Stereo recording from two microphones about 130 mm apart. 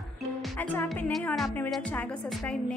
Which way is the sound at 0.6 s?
15° left (ahead or behind).